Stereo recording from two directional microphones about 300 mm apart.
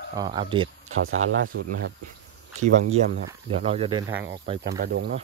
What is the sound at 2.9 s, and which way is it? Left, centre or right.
Speech, right.